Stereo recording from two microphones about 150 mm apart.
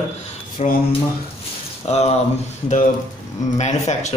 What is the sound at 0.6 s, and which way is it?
Speech, 50° left (ahead or behind).